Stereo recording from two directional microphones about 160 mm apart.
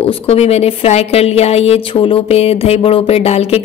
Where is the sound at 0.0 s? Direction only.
40° left (ahead or behind).